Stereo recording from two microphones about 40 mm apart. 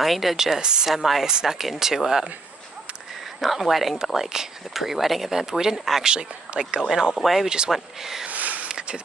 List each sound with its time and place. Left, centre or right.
0.0 s speech: centre
0.6 s speech: centre
0.8 s speech: centre
3.3 s speech: centre; by 6.8 s right
7.2 s speech: centre
7.4 s speech: centre
8.3 s a sound: right
8.6 s a sound: right